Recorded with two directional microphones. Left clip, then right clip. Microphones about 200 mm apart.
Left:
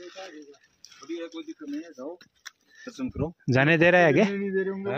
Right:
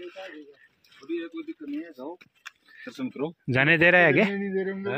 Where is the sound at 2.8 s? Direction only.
20° left (ahead or behind).